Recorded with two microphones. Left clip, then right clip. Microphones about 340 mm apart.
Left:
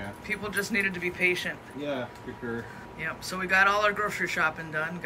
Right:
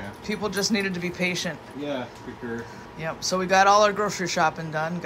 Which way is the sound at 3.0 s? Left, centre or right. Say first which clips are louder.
Right 6 dB; centre.